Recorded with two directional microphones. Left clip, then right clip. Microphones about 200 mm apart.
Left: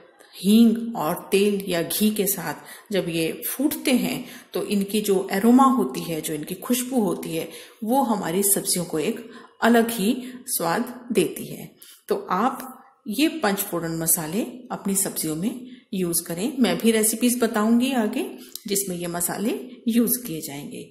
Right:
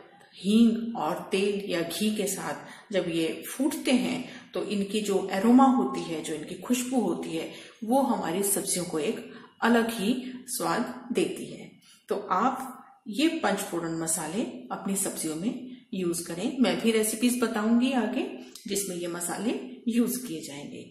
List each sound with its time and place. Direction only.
0.4 s speech: 45° left (ahead or behind)
12.3 s speech: 45° left (ahead or behind)